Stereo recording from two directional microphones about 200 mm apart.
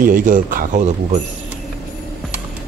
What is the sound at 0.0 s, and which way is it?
Speech, 40° right (ahead or behind).